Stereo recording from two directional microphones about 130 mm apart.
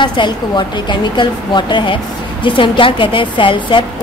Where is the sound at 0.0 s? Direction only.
35° left (ahead or behind).